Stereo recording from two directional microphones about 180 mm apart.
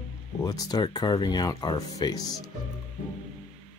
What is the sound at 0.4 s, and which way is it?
Speech, 20° left (ahead or behind).